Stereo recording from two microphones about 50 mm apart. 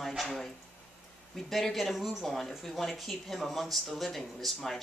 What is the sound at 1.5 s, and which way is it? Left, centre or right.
Speech, centre.